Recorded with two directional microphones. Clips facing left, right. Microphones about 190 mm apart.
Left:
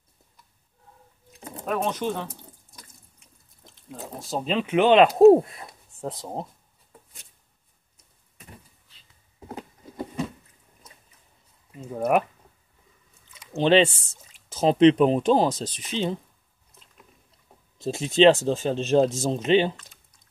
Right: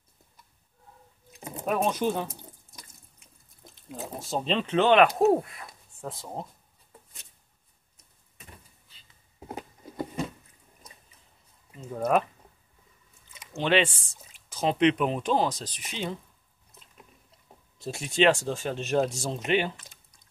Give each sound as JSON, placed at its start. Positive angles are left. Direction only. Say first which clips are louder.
{"t": 1.4, "sound": "speech", "louder": "even", "side_deg": -10}
{"t": 3.9, "sound": "speech", "louder": "left 1 dB", "side_deg": 0}
{"t": 11.9, "sound": "speech", "louder": "left 2 dB", "side_deg": 15}
{"t": 13.6, "sound": "speech", "louder": "left 6 dB", "side_deg": 30}
{"t": 17.7, "sound": "speech", "louder": "left 6 dB", "side_deg": 20}